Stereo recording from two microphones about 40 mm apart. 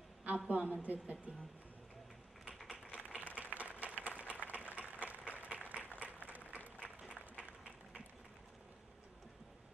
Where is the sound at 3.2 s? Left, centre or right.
Right.